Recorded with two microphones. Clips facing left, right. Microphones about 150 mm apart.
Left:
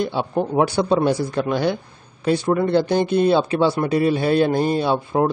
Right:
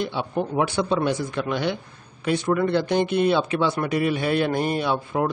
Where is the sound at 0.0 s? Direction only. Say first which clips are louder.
Left 4 dB; 35° left (ahead or behind).